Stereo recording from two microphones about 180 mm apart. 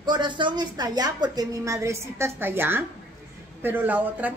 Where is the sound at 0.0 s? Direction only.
25° right (ahead or behind).